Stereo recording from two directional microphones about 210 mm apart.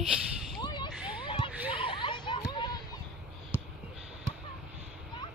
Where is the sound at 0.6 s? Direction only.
20° left (ahead or behind).